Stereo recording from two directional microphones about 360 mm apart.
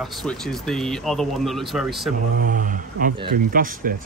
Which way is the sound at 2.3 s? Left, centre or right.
Right.